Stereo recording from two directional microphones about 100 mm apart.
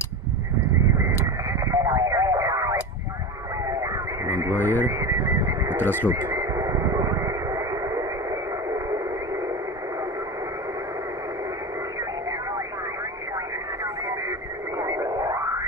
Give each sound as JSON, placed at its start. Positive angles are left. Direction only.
{"t": 1.0, "sound": "radio", "side_deg": -35}
{"t": 3.8, "sound": "radio", "side_deg": -35}
{"t": 4.6, "sound": "a sound", "side_deg": 20}
{"t": 4.8, "sound": "a sound", "side_deg": -30}
{"t": 5.9, "sound": "speech", "side_deg": 20}
{"t": 6.1, "sound": "radio", "side_deg": -40}
{"t": 14.8, "sound": "radio", "side_deg": -35}